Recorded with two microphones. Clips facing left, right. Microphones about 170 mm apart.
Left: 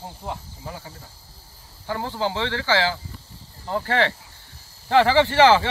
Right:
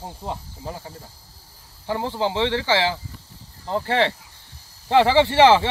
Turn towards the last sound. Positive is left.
turn(degrees=-25)  # may be behind; listen again after turning